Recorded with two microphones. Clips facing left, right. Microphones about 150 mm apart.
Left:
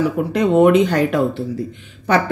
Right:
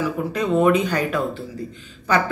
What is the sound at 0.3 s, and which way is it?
Speech, 75° left (ahead or behind).